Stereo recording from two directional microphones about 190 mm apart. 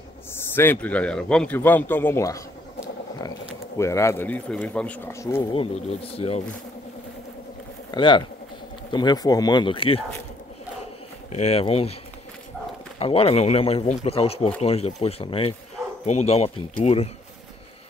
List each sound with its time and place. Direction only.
0.3 s speech: 10° left (ahead or behind)
6.1 s speech: 30° left (ahead or behind)
7.9 s speech: 25° left (ahead or behind)
11.3 s speech: 35° left (ahead or behind)
13.0 s speech: 30° left (ahead or behind)